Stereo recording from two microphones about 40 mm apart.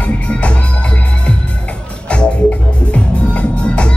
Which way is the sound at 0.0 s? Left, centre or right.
Left.